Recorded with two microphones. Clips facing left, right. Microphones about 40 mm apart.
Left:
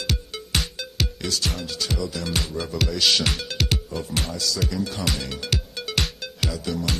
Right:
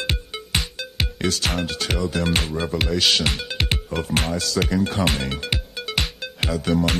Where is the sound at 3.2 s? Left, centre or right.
Centre.